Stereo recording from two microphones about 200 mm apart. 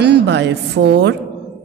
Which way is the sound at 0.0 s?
60° right (ahead or behind).